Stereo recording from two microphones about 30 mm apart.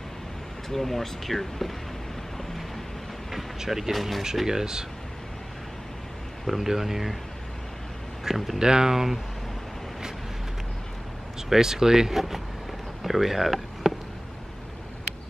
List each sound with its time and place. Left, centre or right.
0.7 s speech: centre
3.5 s speech: centre
3.9 s speech: centre
4.5 s speech: centre
6.4 s speech: centre
8.5 s speech: right
8.9 s speech: centre
11.4 s speech: centre
12.1 s speech: centre